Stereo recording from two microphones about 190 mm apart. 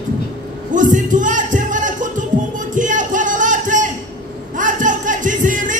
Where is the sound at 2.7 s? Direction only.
40° right (ahead or behind).